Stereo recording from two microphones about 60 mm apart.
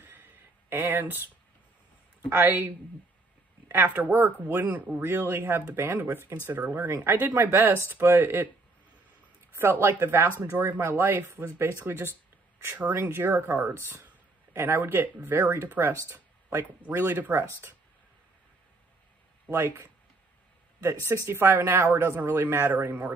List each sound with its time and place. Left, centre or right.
0.0 s a sound: right
2.2 s speech: right
3.7 s speech: right
7.1 s speech: right
9.6 s speech: right
10.8 s speech: right
13.1 s speech: right
13.7 s speech: right
14.5 s speech: right
15.9 s speech: right
17.0 s speech: right
19.5 s speech: right
20.8 s speech: right
22.7 s speech: right